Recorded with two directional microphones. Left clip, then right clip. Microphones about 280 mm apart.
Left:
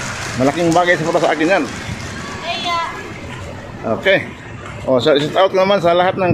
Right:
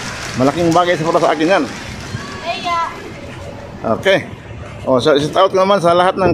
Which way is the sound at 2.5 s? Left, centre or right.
Right.